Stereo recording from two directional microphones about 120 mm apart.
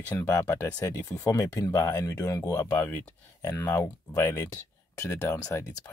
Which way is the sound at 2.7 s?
10° left (ahead or behind).